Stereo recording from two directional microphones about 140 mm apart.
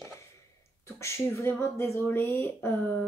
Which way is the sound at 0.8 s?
20° left (ahead or behind).